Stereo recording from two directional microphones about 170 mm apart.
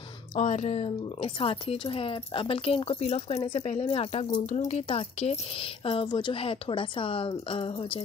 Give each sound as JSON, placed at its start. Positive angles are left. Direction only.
{"t": 0.4, "sound": "speech", "side_deg": 40}